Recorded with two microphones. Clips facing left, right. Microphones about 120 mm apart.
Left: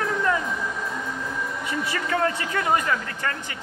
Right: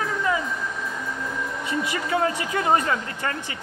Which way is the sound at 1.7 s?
15° right (ahead or behind).